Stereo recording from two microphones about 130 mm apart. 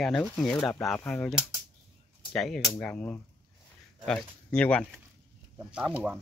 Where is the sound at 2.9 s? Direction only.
10° left (ahead or behind).